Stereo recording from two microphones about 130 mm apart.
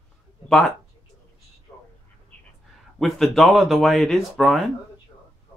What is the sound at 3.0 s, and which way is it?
Speech, centre (ahead or behind).